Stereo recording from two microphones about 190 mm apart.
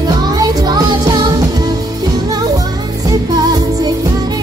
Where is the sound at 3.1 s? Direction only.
20° right (ahead or behind).